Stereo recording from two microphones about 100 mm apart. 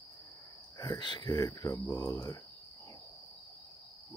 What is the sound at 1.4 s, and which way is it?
Speech, 35° left (ahead or behind).